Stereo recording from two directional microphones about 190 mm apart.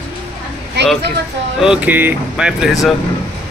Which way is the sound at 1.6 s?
5° right (ahead or behind).